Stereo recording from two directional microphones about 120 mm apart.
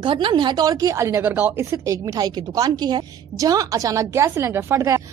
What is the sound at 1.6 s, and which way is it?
A woman's voice, 25° right (ahead or behind).